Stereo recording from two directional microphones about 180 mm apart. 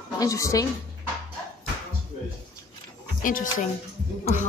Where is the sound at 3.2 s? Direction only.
50° left (ahead or behind).